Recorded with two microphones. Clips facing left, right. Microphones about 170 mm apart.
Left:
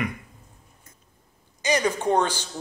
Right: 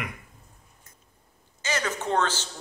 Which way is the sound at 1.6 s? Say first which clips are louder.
Left 6 dB; 15° left (ahead or behind).